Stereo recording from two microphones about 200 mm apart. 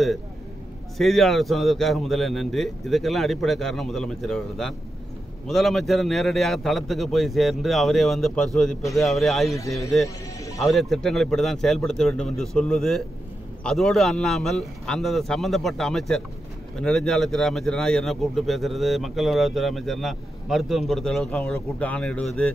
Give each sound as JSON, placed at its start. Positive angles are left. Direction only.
{"t": 0.9, "sound": "a man's voice", "side_deg": 0}
{"t": 9.6, "sound": "a man's voice", "side_deg": 15}
{"t": 10.0, "sound": "music", "side_deg": 15}
{"t": 10.6, "sound": "a man's voice", "side_deg": 0}